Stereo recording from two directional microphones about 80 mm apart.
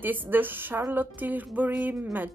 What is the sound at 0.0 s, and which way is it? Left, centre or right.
Speech, right.